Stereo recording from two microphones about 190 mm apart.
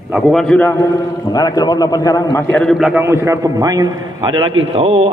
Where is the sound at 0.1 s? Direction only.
Centre (ahead or behind).